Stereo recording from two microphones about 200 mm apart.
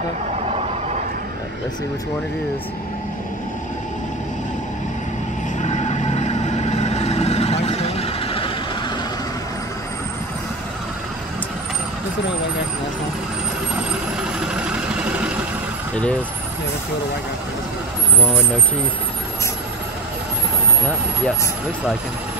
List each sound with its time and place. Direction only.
5.6 s vehicle: 35° left (ahead or behind)
14.5 s vehicle: 5° right (ahead or behind)
16.0 s speech: 5° left (ahead or behind)